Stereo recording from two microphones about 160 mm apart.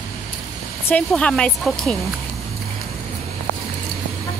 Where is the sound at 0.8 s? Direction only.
10° left (ahead or behind).